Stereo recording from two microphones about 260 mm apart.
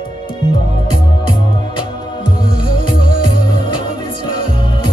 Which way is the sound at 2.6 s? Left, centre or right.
Left.